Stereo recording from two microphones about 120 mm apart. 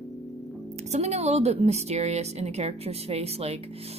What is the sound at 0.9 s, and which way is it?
A woman's voice, 65° right (ahead or behind).